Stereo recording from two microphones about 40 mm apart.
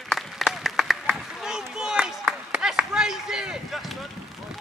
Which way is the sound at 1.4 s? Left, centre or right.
Centre.